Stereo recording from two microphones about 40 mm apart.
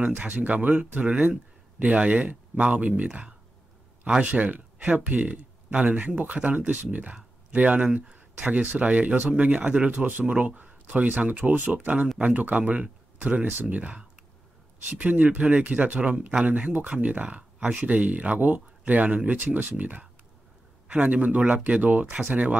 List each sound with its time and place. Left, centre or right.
0.3 s speech: right
9.9 s speech: right